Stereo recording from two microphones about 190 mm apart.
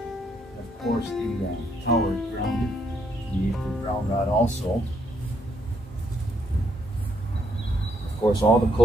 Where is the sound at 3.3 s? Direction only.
20° right (ahead or behind).